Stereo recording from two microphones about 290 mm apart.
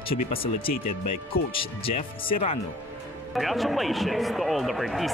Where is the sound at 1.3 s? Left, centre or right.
Centre.